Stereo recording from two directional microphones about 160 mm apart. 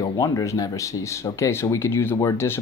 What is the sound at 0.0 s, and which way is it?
Speech, 20° left (ahead or behind).